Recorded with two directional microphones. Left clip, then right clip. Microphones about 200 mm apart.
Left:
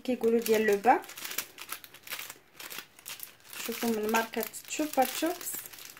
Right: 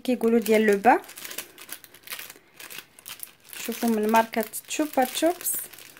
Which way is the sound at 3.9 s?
45° right (ahead or behind).